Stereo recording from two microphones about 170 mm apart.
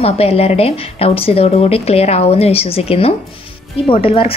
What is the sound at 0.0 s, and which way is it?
A woman's voice, 35° left (ahead or behind).